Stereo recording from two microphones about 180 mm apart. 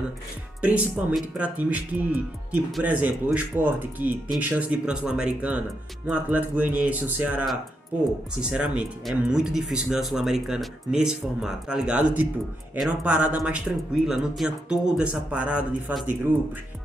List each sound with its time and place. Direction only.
0.6 s speech: 5° right (ahead or behind)